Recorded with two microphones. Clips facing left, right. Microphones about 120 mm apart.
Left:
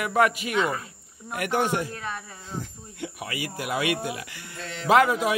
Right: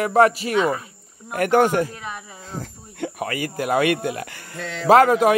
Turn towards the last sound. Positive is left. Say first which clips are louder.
# right 6 dB
turn(degrees=-50)  # may be behind; listen again after turning